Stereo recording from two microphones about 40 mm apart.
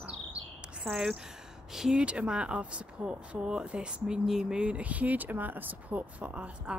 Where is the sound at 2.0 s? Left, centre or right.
Right.